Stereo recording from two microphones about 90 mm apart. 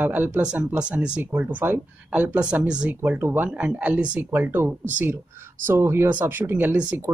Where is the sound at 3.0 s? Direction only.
25° right (ahead or behind).